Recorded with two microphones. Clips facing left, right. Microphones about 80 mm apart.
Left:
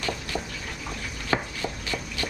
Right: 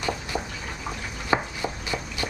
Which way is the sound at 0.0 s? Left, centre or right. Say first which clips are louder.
Right 2 dB; centre.